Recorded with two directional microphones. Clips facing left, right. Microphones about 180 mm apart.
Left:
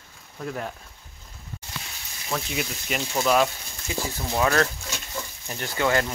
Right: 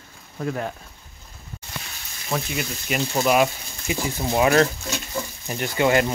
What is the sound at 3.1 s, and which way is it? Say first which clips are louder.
Speech: right 2 dB; 10° right (ahead or behind).